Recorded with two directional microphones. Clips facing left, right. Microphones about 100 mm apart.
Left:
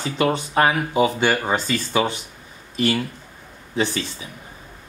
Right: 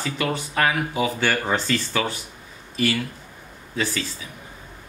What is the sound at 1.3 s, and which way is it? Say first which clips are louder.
Speech: left 2 dB; 15° left (ahead or behind).